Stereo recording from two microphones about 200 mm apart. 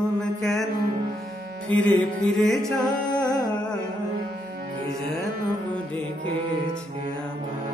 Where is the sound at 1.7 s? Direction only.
5° left (ahead or behind).